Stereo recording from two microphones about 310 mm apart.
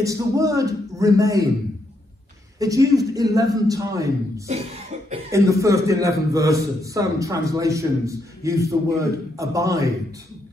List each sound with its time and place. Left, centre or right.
0.0 s a man's voice: centre
2.6 s a man's voice: centre
4.9 s cough: right
5.3 s a man's voice: centre